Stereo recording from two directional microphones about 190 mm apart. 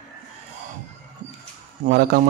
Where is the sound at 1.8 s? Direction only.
55° right (ahead or behind).